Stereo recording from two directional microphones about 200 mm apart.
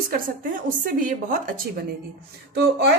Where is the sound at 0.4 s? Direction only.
45° right (ahead or behind).